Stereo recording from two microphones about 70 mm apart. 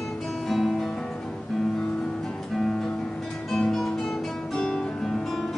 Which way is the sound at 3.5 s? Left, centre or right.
Centre.